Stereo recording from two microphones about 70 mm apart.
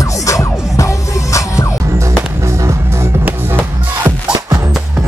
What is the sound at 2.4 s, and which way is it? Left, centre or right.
Music, right.